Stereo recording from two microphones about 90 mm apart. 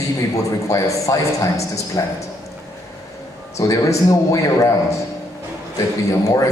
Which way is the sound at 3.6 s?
35° left (ahead or behind).